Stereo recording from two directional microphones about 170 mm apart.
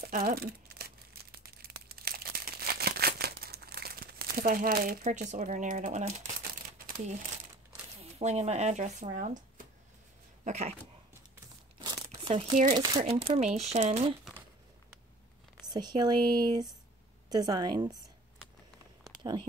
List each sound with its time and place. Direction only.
0.0 s crumpling: 60° right (ahead or behind)
8.0 s speech: 40° right (ahead or behind)
11.9 s crumpling: 30° right (ahead or behind)
12.7 s speech: 30° right (ahead or behind)
15.6 s speech: 25° right (ahead or behind)